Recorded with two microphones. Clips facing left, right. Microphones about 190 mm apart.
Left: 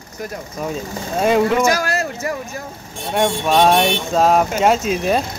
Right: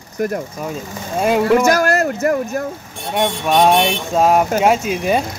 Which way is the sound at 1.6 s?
55° right (ahead or behind).